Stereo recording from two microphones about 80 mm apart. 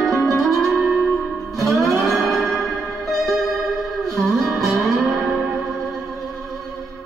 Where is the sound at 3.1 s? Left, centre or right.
Centre.